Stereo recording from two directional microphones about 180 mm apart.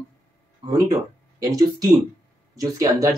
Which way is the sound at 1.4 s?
20° right (ahead or behind).